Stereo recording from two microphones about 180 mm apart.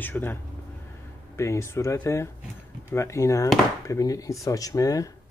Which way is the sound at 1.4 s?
15° left (ahead or behind).